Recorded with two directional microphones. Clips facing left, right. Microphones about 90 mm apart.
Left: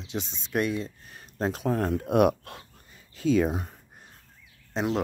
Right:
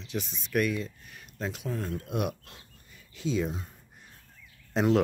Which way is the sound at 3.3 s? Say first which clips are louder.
Left 7 dB; 60° left (ahead or behind).